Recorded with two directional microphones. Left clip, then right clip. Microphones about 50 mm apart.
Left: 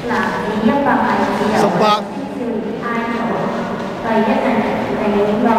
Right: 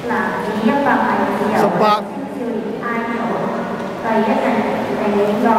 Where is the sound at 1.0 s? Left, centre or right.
Centre.